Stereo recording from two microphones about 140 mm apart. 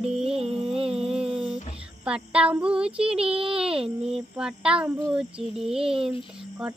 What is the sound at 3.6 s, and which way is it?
A child's voice, 5° right (ahead or behind).